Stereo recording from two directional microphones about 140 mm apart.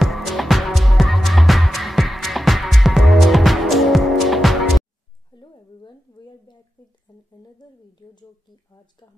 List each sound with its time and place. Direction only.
0.0 s music: centre (ahead or behind)
5.4 s a sound: 30° left (ahead or behind)
7.1 s humming: 30° left (ahead or behind)
8.0 s speech: 30° left (ahead or behind)